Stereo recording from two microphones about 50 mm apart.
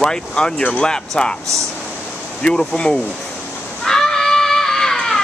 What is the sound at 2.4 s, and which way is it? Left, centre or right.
Speech, centre.